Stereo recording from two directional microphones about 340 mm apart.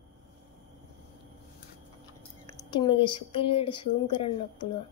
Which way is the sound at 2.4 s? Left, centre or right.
Centre.